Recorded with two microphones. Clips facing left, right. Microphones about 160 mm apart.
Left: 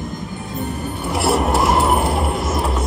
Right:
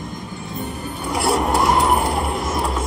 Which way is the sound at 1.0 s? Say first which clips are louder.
Left 1 dB; centre (ahead or behind).